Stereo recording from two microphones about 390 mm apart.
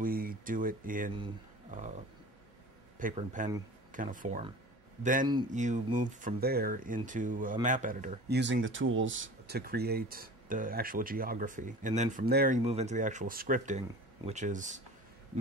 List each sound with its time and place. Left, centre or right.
0.0 s speech: right
3.0 s speech: centre